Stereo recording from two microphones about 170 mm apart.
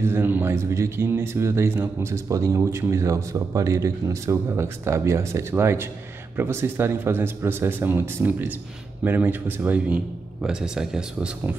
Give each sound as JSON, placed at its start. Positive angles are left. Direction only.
{"t": 0.0, "sound": "speech", "side_deg": -15}